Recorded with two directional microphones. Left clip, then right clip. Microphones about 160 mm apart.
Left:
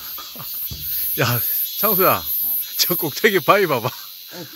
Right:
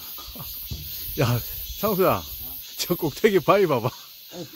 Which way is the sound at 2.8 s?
10° right (ahead or behind).